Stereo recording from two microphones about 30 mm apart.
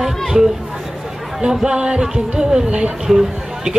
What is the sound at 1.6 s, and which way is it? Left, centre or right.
Speech, right.